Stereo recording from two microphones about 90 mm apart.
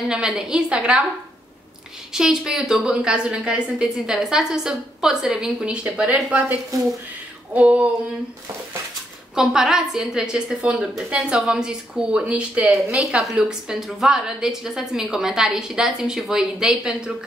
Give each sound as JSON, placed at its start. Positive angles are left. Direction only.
{"t": 0.1, "sound": "a woman's voice", "side_deg": -10}
{"t": 2.1, "sound": "a woman's voice", "side_deg": -5}
{"t": 7.5, "sound": "a woman's voice", "side_deg": -15}
{"t": 9.3, "sound": "a woman's voice", "side_deg": -5}